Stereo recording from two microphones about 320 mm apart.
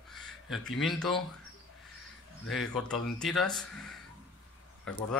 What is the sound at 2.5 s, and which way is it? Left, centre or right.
Speech, centre.